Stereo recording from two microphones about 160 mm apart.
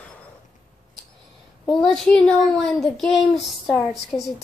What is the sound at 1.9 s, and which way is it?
A woman's voice, 5° left (ahead or behind).